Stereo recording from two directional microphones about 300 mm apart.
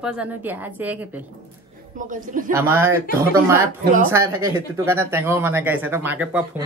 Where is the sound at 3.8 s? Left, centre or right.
Right.